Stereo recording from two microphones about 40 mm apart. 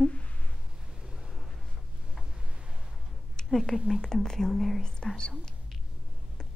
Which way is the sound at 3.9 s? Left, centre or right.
Centre.